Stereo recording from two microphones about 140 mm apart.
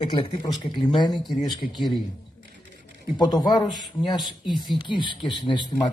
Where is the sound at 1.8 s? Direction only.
Centre (ahead or behind).